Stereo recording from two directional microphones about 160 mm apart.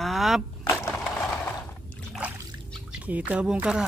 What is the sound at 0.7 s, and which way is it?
Crushing, 15° left (ahead or behind).